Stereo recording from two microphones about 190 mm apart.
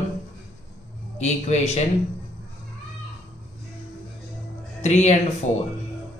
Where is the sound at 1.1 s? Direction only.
35° left (ahead or behind).